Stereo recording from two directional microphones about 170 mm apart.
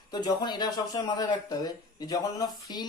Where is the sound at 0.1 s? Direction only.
25° left (ahead or behind).